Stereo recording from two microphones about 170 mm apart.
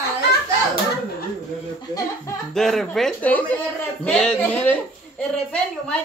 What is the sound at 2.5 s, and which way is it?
A woman's voice, 5° left (ahead or behind).